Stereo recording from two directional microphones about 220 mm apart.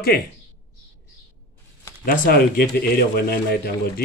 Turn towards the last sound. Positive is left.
turn(degrees=45)  # may be behind; listen again after turning